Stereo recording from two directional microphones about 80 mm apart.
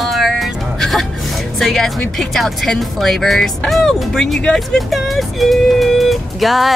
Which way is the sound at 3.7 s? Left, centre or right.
Centre.